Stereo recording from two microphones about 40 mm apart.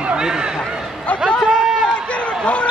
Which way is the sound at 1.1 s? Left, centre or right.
Left.